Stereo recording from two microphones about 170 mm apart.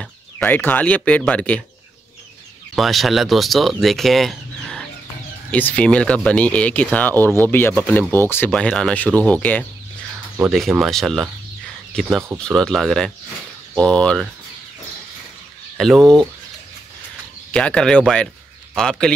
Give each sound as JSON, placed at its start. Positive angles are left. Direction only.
{"t": 0.0, "sound": "speech", "side_deg": 5}
{"t": 2.7, "sound": "speech", "side_deg": 0}
{"t": 15.8, "sound": "speech", "side_deg": 0}
{"t": 17.5, "sound": "speech", "side_deg": 5}